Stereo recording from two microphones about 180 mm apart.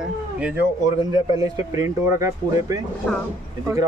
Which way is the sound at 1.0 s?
20° right (ahead or behind).